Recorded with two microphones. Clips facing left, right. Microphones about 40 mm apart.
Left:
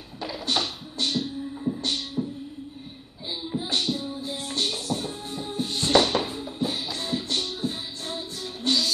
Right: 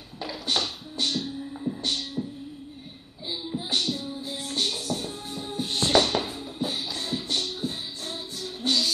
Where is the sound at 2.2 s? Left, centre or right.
Left.